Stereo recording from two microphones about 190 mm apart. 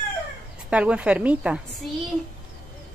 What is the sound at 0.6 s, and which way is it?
A woman's voice, 5° right (ahead or behind).